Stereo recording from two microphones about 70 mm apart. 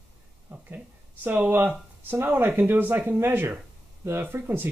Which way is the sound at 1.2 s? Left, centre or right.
Right.